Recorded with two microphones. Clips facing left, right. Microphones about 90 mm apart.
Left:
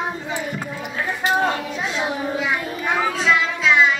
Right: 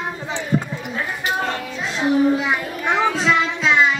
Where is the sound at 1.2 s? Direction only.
20° left (ahead or behind).